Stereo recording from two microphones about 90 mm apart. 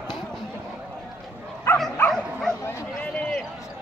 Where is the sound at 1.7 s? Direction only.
30° left (ahead or behind).